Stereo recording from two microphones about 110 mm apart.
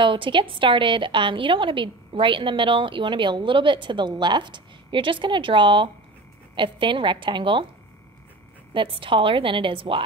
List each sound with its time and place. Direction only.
0.0 s a woman's voice: 50° right (ahead or behind)
8.7 s a woman's voice: 50° right (ahead or behind)